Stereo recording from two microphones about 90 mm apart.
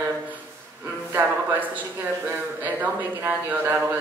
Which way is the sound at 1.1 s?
20° right (ahead or behind).